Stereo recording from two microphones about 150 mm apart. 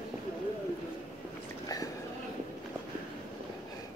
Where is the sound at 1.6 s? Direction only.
25° left (ahead or behind).